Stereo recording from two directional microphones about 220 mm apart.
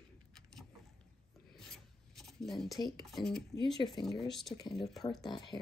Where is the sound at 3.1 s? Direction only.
Centre (ahead or behind).